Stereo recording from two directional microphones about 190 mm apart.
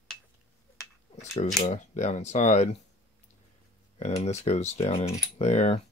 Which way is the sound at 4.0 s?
35° left (ahead or behind).